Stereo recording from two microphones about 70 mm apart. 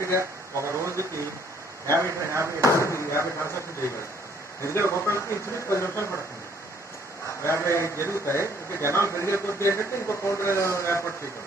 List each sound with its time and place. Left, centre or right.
0.0 s a sound: right
1.9 s a man's voice: right
2.6 s a man's voice: left
7.4 s a man's voice: left